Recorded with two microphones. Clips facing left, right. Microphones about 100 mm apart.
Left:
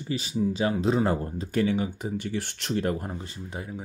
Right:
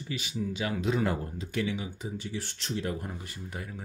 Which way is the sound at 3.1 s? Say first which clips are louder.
Left 4 dB; 25° left (ahead or behind).